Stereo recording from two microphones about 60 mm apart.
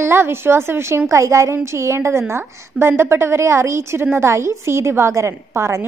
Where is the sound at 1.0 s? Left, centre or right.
Right.